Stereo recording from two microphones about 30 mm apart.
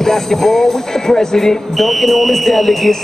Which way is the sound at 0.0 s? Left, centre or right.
Centre.